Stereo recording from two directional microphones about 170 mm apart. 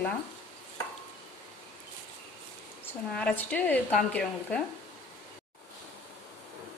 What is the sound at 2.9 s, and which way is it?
A woman's voice, 10° left (ahead or behind).